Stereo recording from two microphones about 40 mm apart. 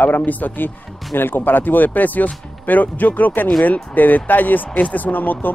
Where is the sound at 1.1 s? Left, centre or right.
Left.